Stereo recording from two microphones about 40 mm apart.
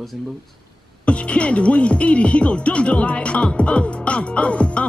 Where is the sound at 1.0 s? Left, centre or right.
Left.